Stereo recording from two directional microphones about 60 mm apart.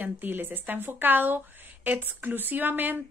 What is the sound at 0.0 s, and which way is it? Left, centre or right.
Speech, right.